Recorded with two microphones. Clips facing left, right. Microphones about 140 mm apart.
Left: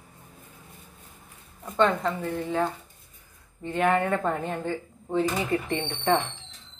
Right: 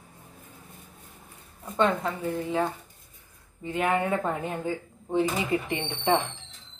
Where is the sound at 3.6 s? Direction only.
10° right (ahead or behind).